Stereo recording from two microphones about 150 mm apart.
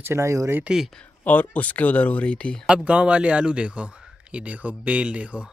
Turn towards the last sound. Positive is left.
turn(degrees=-10)  # may be behind; listen again after turning